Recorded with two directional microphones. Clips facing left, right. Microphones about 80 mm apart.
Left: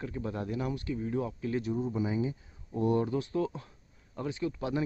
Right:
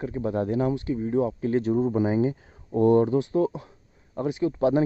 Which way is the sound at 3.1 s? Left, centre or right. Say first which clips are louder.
Right 8 dB; right.